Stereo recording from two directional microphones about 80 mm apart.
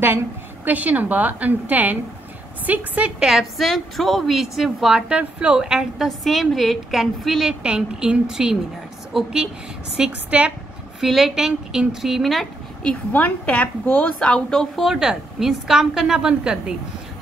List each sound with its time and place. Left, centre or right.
0.7 s a woman's voice: right
3.2 s a woman's voice: centre
13.1 s a woman's voice: centre
14.2 s a woman's voice: centre